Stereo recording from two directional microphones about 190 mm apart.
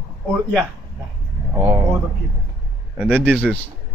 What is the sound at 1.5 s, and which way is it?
Speech, 15° right (ahead or behind).